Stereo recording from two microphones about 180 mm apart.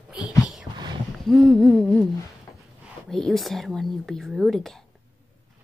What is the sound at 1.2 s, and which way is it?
Speech, centre (ahead or behind).